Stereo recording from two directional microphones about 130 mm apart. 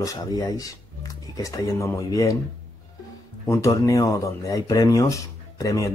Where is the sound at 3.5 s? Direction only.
25° left (ahead or behind).